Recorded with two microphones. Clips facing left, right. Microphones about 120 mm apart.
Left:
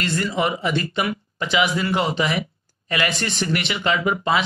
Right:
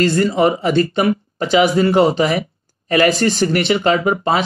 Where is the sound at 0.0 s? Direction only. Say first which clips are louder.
Right 8 dB; 35° right (ahead or behind).